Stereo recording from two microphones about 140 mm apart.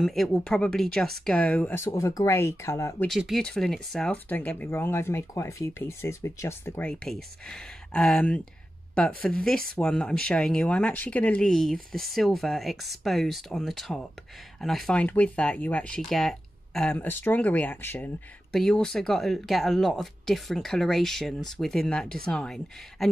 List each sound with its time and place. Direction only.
0.0 s speech: centre (ahead or behind); by 3.1 s 20° left (ahead or behind)
3.1 s speech: centre (ahead or behind)